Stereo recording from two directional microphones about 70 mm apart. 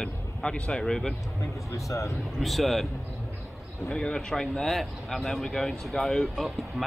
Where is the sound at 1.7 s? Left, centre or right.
Left.